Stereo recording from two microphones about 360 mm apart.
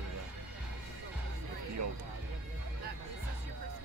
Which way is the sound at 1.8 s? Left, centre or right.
Right.